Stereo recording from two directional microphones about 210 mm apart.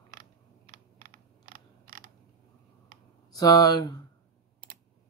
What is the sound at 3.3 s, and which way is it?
Speech, 15° left (ahead or behind).